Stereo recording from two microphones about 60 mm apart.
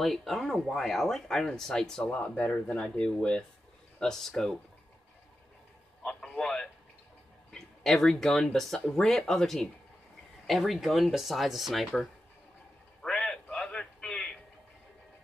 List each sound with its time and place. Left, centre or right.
0.0 s speech: centre
2.0 s speech: left; by 4.6 s centre
6.0 s radio: centre
7.5 s speech: centre
13.0 s a sound: centre